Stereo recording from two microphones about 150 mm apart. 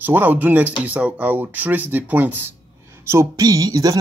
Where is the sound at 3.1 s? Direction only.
25° right (ahead or behind).